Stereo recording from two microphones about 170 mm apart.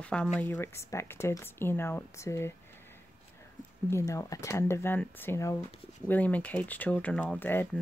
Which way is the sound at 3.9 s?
15° left (ahead or behind).